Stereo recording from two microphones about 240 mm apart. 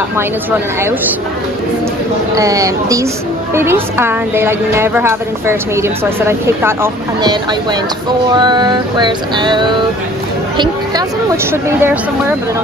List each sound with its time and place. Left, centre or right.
2.3 s a woman's voice: centre
11.2 s a woman's voice: centre